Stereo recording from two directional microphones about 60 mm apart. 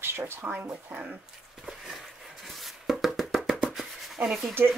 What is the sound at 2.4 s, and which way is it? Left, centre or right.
Music, centre.